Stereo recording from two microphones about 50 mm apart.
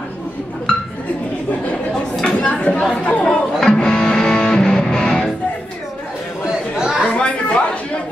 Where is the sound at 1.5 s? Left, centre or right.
Left.